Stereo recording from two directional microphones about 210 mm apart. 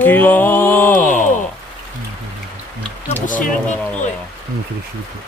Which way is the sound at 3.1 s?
40° left (ahead or behind).